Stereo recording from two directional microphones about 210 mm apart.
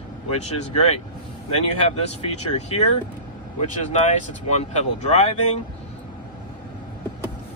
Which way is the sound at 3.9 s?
30° left (ahead or behind).